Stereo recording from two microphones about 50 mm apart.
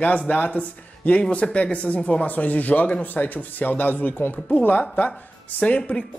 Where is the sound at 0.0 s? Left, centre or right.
Left.